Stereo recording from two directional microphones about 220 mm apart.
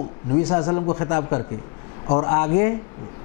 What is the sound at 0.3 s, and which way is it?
Speech, 20° left (ahead or behind).